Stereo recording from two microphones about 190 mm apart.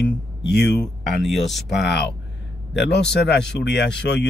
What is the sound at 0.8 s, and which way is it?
Speech, centre (ahead or behind).